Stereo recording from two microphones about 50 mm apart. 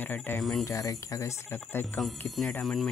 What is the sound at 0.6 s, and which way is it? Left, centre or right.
Speech, left.